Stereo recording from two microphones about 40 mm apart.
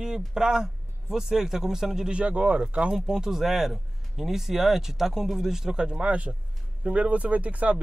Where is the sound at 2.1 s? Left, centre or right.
Right.